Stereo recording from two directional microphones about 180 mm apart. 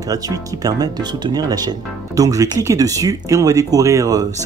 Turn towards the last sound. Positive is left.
turn(degrees=-20)  # may be behind; listen again after turning